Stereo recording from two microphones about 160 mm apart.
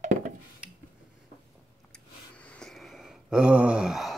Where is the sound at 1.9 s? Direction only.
5° left (ahead or behind).